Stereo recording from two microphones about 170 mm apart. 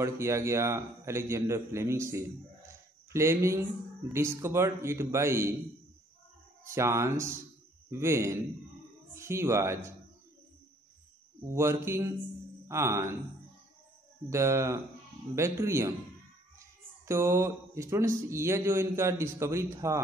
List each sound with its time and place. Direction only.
0.0 s a man's voice: 15° right (ahead or behind)
6.7 s a man's voice: 15° right (ahead or behind)
11.4 s a man's voice: 15° right (ahead or behind)
14.3 s a man's voice: 15° right (ahead or behind)